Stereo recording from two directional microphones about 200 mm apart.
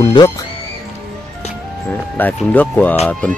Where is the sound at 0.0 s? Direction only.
25° left (ahead or behind).